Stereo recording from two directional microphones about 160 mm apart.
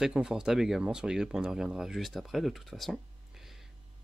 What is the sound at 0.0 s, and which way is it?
Speech, 5° right (ahead or behind).